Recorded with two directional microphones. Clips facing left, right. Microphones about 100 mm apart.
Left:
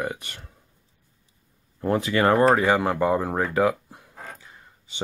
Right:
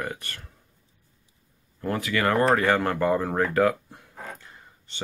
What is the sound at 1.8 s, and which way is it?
Speech, 25° left (ahead or behind).